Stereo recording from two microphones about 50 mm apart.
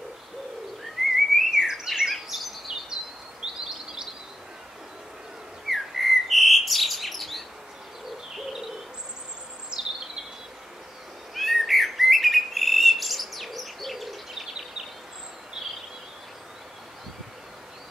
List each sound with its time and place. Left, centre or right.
1.1 s bird: centre
2.7 s bird vocalization: centre
3.6 s chirp: centre
5.7 s bird: centre
9.7 s bird vocalization: centre
11.3 s bird: centre